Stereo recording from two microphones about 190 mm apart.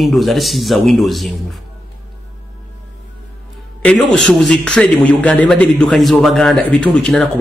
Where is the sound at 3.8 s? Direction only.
5° left (ahead or behind).